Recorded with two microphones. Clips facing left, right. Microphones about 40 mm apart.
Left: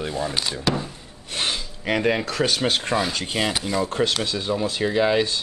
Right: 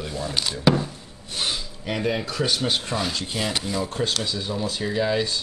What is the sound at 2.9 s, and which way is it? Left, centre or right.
Speech, centre.